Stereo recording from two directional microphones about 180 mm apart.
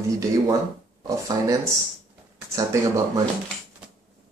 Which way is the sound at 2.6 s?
20° right (ahead or behind).